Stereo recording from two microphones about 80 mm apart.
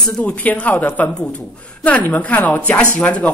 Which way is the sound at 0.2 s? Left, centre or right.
Centre.